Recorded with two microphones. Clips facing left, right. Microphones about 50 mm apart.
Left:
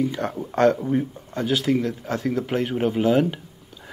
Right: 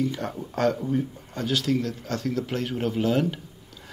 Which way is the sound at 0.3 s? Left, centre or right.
Left.